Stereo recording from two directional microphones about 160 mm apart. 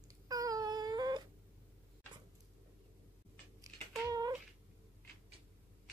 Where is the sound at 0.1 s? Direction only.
20° right (ahead or behind).